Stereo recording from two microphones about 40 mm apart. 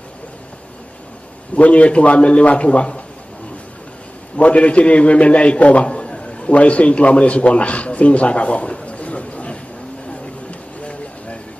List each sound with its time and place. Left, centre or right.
1.5 s a man's voice: left
4.4 s a man's voice: left
10.5 s vehicle: left